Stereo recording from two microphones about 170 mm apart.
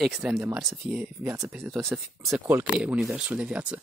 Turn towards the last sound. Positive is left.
turn(degrees=-5)  # may be behind; listen again after turning